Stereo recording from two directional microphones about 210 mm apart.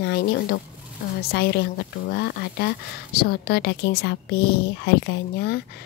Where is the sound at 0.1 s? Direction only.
45° left (ahead or behind).